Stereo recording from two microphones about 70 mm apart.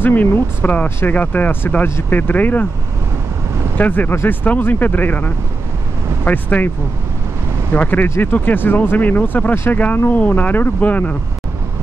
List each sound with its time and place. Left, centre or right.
0.0 s speech: left
3.7 s speech: left
7.7 s speech: left